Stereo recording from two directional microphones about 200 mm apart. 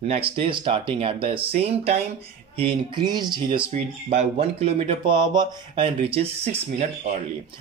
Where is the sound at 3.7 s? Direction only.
30° right (ahead or behind).